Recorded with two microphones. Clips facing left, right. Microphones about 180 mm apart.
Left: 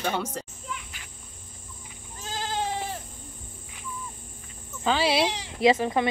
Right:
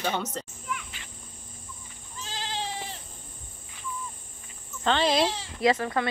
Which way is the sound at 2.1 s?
50° left (ahead or behind).